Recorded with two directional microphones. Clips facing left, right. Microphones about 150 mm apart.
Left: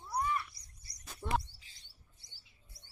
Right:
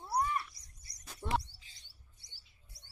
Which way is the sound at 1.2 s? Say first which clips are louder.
Even; centre (ahead or behind).